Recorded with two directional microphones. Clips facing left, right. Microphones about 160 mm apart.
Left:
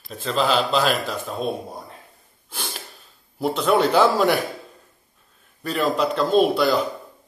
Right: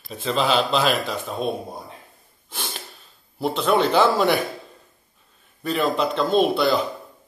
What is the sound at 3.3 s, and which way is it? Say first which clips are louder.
Speech: left 1 dB; 5° left (ahead or behind).